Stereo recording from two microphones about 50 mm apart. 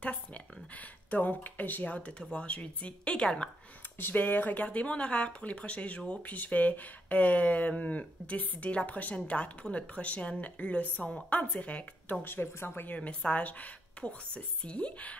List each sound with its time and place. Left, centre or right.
0.0 s speech: left
2.0 s speech: left
4.0 s a woman's voice: left
4.6 s speech: left
6.2 s a woman's voice: left
12.3 s speech: left
12.9 s speech: left